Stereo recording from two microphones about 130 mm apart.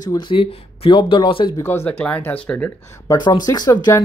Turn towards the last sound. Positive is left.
turn(degrees=30)  # may be behind; listen again after turning